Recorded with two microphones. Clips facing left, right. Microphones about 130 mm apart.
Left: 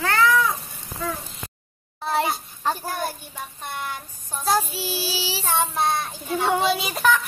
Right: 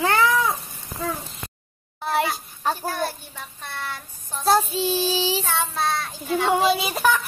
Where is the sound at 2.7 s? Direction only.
10° left (ahead or behind).